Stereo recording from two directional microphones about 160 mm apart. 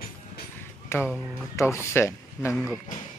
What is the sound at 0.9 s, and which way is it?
Speech, 15° left (ahead or behind).